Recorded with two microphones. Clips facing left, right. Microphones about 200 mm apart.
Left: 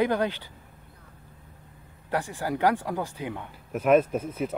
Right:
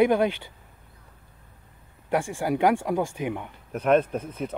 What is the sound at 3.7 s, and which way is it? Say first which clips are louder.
Speech: left 1 dB; 5° left (ahead or behind).